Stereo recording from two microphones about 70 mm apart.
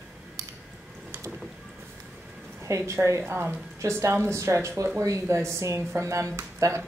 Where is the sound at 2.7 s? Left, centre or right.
Right.